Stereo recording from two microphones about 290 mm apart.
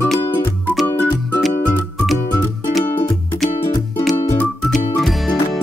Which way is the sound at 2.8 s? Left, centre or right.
Centre.